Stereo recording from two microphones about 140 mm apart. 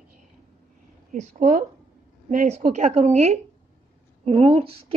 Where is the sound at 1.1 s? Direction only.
60° right (ahead or behind).